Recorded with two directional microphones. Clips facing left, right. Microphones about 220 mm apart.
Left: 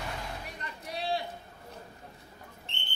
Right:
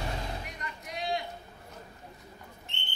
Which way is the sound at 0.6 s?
35° left (ahead or behind).